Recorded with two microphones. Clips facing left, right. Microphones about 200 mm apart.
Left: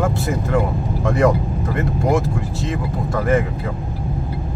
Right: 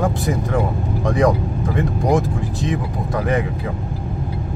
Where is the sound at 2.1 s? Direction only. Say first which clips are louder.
Right 1 dB; 15° right (ahead or behind).